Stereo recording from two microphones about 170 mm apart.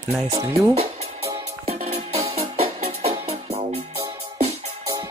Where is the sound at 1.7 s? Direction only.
40° right (ahead or behind).